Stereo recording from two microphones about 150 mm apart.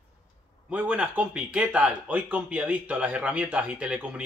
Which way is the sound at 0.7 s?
10° right (ahead or behind).